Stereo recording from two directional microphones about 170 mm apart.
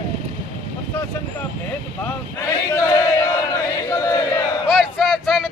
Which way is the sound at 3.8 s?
20° left (ahead or behind).